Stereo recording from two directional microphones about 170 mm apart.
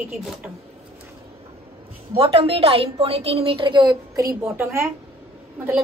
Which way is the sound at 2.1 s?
35° right (ahead or behind).